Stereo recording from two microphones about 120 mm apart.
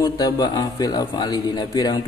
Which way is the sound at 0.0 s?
30° left (ahead or behind).